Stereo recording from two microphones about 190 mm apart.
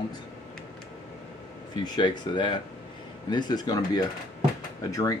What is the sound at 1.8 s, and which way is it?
Speech, 25° left (ahead or behind).